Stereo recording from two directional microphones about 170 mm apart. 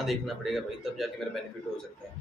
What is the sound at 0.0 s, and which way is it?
A man's voice, centre (ahead or behind).